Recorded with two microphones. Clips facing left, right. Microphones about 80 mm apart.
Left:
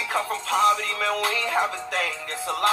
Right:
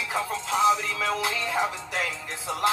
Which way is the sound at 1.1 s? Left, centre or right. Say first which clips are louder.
Left 5 dB; centre.